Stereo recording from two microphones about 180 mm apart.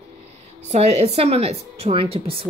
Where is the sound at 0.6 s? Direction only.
40° right (ahead or behind).